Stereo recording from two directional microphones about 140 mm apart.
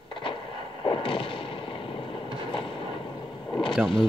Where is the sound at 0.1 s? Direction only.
40° left (ahead or behind).